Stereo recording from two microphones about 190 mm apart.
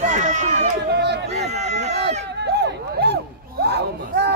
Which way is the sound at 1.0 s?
60° right (ahead or behind).